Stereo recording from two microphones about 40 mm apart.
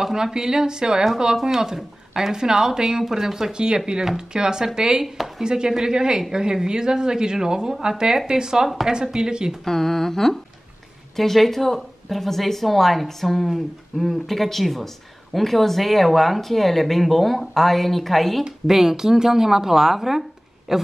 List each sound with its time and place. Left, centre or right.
0.0 s speech: centre
3.5 s speech: right
5.0 s a woman's voice: centre
5.4 s speech: centre
8.6 s a woman's voice: centre
8.9 s speech: centre
9.7 s a woman's voice: centre
18.7 s speech: centre